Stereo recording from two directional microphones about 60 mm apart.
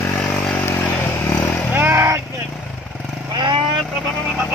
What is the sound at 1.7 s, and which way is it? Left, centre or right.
Vehicle, right.